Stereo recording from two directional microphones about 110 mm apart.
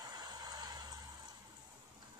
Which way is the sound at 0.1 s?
35° right (ahead or behind).